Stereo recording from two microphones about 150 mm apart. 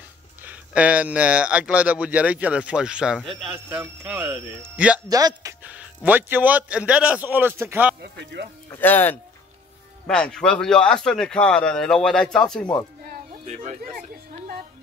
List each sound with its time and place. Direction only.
0.4 s speech: 10° right (ahead or behind)
3.8 s speech: 15° right (ahead or behind)
5.0 s speech: 25° right (ahead or behind)
6.0 s speech: 15° right (ahead or behind)
8.6 s speech: 15° left (ahead or behind)
13.5 s speech: 55° right (ahead or behind)